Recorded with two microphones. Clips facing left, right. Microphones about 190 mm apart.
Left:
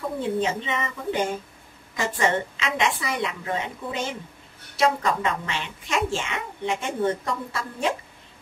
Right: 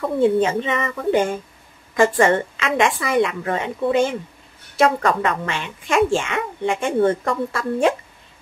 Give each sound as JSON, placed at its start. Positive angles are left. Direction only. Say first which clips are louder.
{"t": 0.0, "sound": "a woman's voice", "louder": "right 8 dB", "side_deg": -60}